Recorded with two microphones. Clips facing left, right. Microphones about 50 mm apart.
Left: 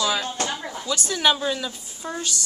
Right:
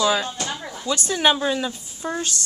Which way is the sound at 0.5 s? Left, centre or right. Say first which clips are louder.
Left 1 dB; centre.